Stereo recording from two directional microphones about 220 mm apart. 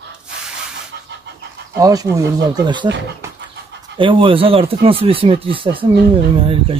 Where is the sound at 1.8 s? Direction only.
15° right (ahead or behind).